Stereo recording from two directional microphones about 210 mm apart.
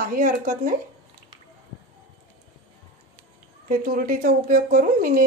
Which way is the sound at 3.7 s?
40° right (ahead or behind).